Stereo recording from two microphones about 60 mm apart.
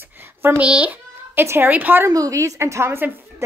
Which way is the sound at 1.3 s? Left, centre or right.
Right.